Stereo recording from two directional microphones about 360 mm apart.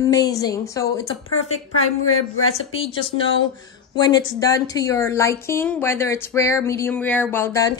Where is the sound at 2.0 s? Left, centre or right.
Left.